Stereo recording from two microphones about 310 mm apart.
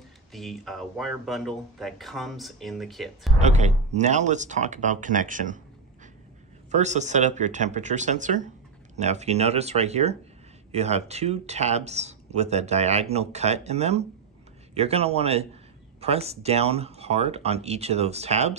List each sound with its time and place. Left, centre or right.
0.3 s speech: centre
3.3 s speech: right
6.7 s speech: right